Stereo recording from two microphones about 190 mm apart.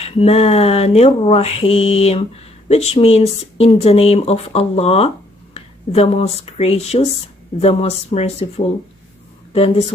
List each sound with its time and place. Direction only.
0.0 s speech: 30° left (ahead or behind)